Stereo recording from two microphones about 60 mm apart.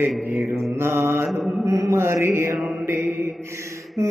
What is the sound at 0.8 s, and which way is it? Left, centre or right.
Mantra, right.